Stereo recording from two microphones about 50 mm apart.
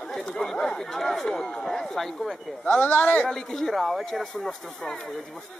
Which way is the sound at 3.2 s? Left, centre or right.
Centre.